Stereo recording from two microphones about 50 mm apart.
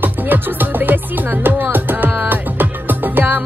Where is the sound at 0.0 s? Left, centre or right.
Right.